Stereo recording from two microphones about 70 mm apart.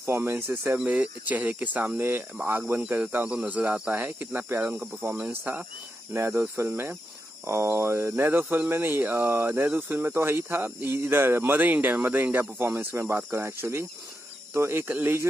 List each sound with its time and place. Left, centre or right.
0.0 s speech: right
0.7 s speech: right
3.3 s speech: centre